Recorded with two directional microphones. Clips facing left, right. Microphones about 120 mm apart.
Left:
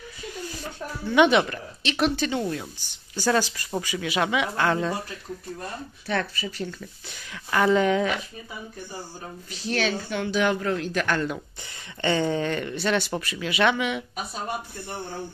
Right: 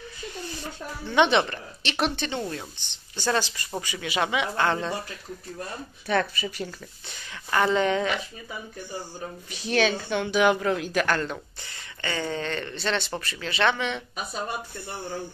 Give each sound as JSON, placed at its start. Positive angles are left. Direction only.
{"t": 1.1, "sound": "speech", "side_deg": 5}
{"t": 6.0, "sound": "a woman's voice", "side_deg": -15}
{"t": 7.1, "sound": "speech", "side_deg": 0}
{"t": 9.5, "sound": "a woman's voice", "side_deg": -15}
{"t": 12.0, "sound": "speech", "side_deg": 20}